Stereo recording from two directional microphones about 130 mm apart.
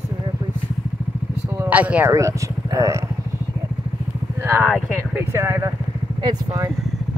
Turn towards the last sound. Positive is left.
turn(degrees=-25)  # may be behind; listen again after turning